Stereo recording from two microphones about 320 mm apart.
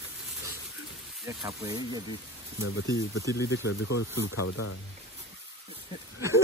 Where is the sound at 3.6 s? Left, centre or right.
Left.